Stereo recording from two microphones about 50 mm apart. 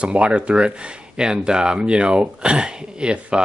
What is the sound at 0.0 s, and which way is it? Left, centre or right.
Speech, right.